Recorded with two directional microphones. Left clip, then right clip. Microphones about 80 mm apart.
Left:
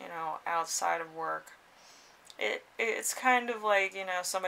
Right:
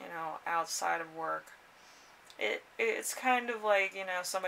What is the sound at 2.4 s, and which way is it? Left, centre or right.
Speech, left.